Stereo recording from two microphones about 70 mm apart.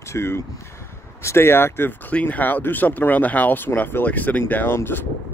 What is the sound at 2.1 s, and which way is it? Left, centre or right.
Speech, left.